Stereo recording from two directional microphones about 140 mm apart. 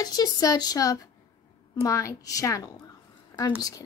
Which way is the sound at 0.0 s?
30° left (ahead or behind).